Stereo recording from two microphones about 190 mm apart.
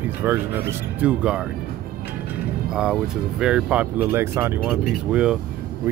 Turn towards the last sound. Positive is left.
turn(degrees=-5)  # may be behind; listen again after turning